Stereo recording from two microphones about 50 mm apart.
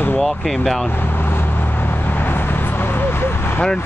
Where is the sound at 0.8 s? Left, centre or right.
Left.